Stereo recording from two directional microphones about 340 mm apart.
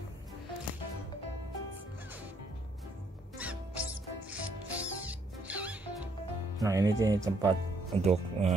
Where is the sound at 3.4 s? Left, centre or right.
Centre.